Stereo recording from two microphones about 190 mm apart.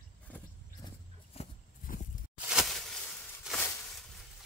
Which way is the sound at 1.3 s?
35° left (ahead or behind).